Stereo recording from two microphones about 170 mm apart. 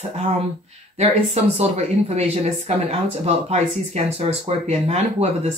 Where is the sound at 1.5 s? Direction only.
40° right (ahead or behind).